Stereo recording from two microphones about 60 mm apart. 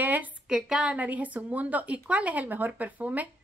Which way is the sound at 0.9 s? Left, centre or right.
Right.